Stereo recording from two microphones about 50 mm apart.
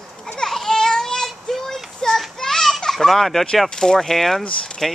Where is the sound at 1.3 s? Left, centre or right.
Centre.